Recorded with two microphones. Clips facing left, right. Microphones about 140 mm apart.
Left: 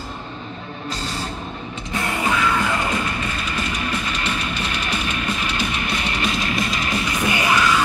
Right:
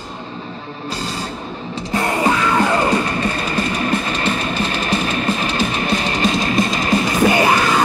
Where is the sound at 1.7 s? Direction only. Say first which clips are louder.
Right 7 dB; 35° right (ahead or behind).